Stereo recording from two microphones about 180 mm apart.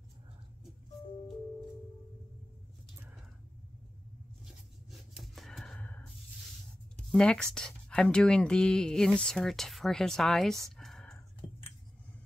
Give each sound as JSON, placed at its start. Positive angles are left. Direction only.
{"t": 4.9, "sound": "rub", "side_deg": 0}
{"t": 7.0, "sound": "speech", "side_deg": 5}
{"t": 10.8, "sound": "whispering", "side_deg": 0}
{"t": 11.4, "sound": "a sound", "side_deg": 30}